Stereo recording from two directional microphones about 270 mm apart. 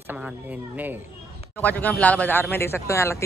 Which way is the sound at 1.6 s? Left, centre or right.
Centre.